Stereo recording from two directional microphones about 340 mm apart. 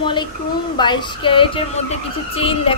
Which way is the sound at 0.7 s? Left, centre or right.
Centre.